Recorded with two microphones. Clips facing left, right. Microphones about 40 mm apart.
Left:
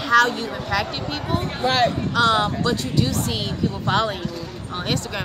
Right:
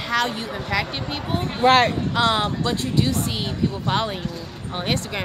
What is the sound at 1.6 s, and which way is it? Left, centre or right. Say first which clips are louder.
Speech: right 4 dB; right.